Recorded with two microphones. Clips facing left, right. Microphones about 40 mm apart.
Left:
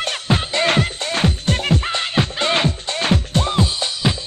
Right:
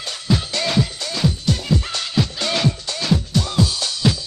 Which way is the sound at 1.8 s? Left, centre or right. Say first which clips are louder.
Left 2 dB; left.